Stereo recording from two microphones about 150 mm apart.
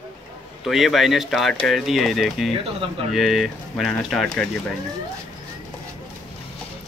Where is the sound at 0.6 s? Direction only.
Centre (ahead or behind).